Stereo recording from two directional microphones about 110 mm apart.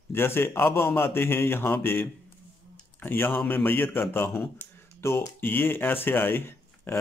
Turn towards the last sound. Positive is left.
turn(degrees=20)  # may be behind; listen again after turning